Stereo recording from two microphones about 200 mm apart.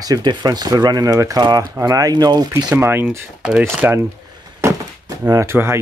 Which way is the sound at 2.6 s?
10° right (ahead or behind).